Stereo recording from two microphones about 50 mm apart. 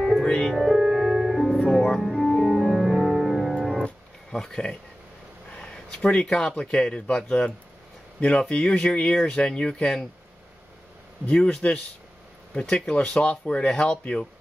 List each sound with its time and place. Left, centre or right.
0.2 s music: centre
0.6 s music: centre
2.0 s organ: centre
3.8 s a sound: centre
6.2 s speech: centre
11.2 s speech: left
12.5 s speech: centre